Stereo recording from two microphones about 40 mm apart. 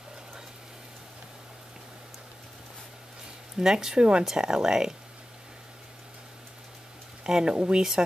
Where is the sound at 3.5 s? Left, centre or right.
Centre.